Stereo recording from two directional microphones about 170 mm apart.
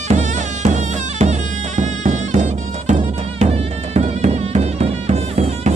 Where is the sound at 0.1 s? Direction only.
45° right (ahead or behind).